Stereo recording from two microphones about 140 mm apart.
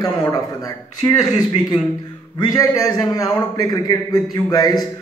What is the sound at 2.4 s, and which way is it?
A man's voice, 25° left (ahead or behind).